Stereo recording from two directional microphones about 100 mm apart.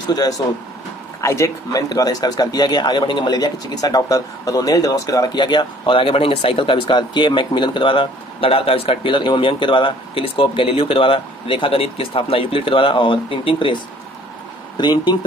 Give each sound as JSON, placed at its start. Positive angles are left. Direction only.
{"t": 0.1, "sound": "speech", "side_deg": 40}
{"t": 5.3, "sound": "speech", "side_deg": 50}
{"t": 14.8, "sound": "speech", "side_deg": 45}